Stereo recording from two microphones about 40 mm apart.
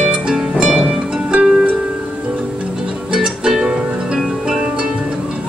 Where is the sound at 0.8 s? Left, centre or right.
Right.